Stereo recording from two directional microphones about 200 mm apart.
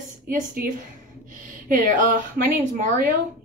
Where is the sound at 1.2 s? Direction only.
40° right (ahead or behind).